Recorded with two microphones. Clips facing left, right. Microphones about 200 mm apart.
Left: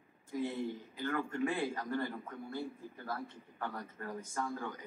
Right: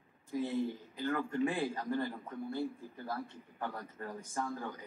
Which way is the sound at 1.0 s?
15° right (ahead or behind).